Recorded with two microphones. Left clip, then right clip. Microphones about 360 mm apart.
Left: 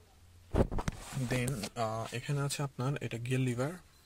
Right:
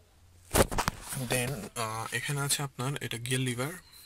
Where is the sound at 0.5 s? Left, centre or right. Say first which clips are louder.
Right 7 dB; right.